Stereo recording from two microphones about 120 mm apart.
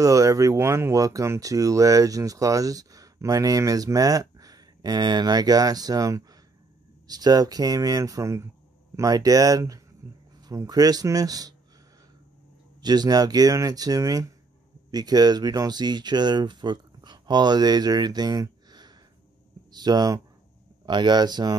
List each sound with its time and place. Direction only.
0.0 s speech: 30° right (ahead or behind)
12.8 s speech: 35° right (ahead or behind)